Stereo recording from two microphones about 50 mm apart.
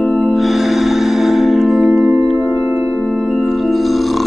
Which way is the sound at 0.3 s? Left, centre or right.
Centre.